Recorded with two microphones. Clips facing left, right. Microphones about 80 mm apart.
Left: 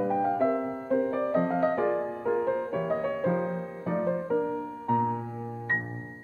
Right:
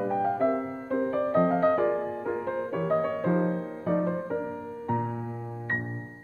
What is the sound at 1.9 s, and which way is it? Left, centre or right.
Music, centre.